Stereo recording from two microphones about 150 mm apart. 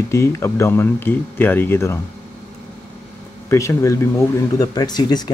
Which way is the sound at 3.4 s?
20° left (ahead or behind).